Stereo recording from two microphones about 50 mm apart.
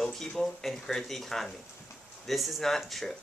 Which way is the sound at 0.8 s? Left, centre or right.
Centre.